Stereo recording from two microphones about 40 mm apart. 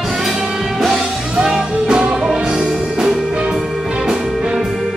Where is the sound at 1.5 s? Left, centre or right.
Centre.